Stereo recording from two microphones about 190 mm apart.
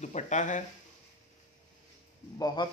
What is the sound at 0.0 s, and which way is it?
Speech, 40° left (ahead or behind).